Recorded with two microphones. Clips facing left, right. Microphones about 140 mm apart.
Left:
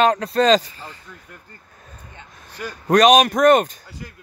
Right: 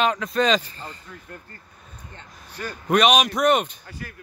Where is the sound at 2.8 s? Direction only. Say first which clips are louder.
Left 5 dB; 40° left (ahead or behind).